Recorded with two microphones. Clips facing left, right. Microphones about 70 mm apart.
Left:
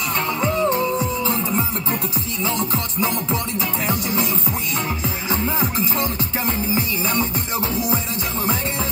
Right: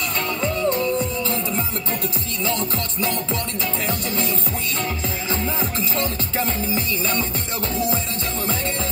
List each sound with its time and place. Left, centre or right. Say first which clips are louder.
0.6 s music: left 2 dB; left
2.4 s music: left 1 dB; centre
5.3 s music: left 3 dB; left